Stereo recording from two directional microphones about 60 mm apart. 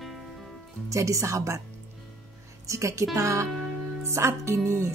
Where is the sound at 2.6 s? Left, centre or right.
Right.